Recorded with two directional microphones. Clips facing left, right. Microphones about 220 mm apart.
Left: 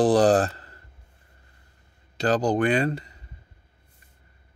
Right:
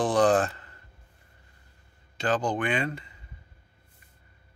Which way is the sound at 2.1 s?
40° left (ahead or behind).